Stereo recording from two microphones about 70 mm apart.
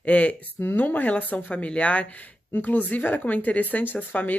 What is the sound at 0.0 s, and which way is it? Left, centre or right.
Speech, left.